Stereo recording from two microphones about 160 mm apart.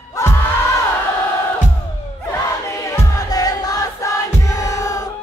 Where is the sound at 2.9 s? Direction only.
25° left (ahead or behind).